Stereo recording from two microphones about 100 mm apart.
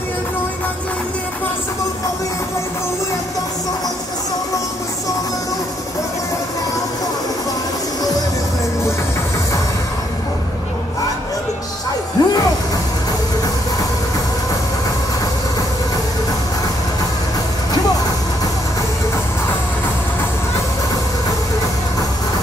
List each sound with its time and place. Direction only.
12.2 s music: 35° left (ahead or behind)